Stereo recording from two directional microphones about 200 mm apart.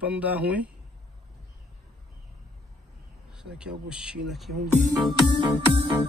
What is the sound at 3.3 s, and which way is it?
Speech, 5° right (ahead or behind).